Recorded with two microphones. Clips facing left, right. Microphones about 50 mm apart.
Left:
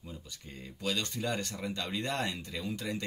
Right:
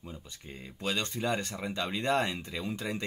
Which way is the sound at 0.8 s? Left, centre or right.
Right.